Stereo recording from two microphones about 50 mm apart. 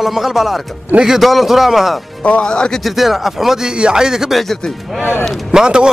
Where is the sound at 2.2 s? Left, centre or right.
Left.